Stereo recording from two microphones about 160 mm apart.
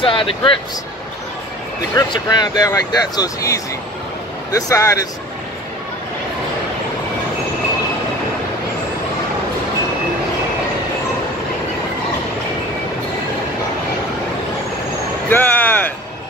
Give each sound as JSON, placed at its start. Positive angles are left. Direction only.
{"t": 0.0, "sound": "speech", "side_deg": 30}
{"t": 2.0, "sound": "speech", "side_deg": 25}
{"t": 15.2, "sound": "a sound", "side_deg": 10}